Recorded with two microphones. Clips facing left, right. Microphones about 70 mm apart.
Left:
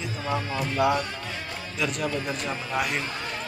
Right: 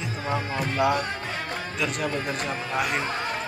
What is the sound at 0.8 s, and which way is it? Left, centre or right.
Speech, centre.